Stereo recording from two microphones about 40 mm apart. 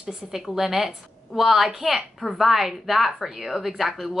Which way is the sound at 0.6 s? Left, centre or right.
Centre.